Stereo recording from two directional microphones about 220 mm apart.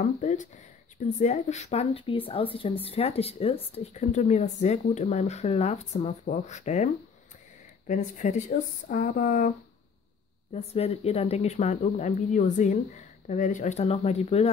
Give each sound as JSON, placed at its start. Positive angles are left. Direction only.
{"t": 0.0, "sound": "a woman's voice", "side_deg": 35}
{"t": 10.5, "sound": "a woman's voice", "side_deg": 30}